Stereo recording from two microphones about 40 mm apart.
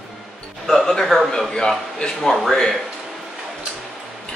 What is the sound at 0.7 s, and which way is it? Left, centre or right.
Speech, centre.